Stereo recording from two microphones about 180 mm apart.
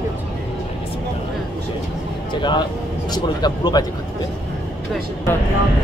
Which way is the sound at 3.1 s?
25° left (ahead or behind).